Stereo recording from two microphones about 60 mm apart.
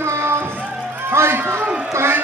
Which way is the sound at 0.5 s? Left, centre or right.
Right.